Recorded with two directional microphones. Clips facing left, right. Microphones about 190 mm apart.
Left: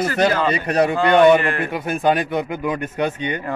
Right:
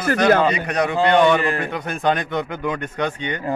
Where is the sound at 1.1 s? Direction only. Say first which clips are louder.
Left 4 dB; 10° left (ahead or behind).